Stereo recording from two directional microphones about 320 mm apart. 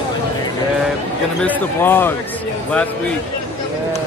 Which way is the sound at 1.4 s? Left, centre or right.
Centre.